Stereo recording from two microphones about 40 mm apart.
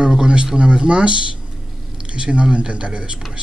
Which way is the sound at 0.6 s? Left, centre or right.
Right.